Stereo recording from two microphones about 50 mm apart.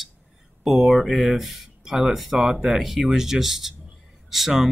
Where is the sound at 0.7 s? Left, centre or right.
Centre.